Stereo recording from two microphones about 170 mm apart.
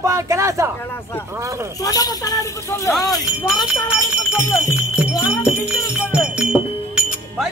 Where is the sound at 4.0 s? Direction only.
15° left (ahead or behind).